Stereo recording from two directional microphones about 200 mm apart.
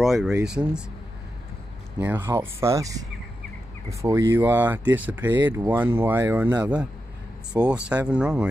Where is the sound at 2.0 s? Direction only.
10° right (ahead or behind).